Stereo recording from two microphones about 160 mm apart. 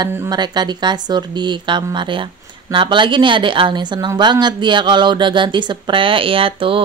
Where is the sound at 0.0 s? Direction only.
20° right (ahead or behind).